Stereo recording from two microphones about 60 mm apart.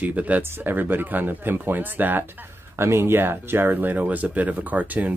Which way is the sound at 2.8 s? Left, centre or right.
Right.